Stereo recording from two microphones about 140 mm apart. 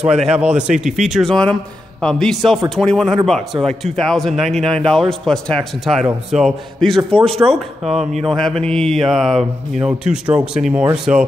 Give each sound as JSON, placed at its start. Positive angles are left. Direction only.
{"t": 0.0, "sound": "speech", "side_deg": -5}
{"t": 7.1, "sound": "a man's voice", "side_deg": -40}
{"t": 7.5, "sound": "speech", "side_deg": 0}